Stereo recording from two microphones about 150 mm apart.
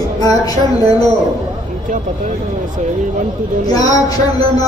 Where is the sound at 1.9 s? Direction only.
60° right (ahead or behind).